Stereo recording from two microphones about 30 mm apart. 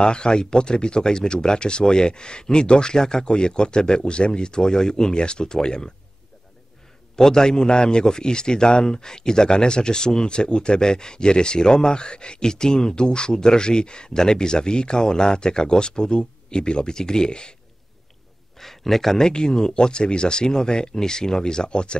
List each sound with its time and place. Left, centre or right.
0.0 s speech: left
7.2 s speech: centre
18.6 s speech: centre
19.2 s speech: left